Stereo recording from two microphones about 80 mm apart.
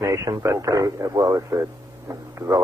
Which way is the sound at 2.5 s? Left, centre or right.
Right.